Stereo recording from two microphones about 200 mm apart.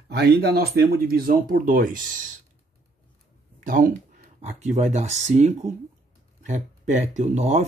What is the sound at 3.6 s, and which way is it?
Speech, 45° right (ahead or behind).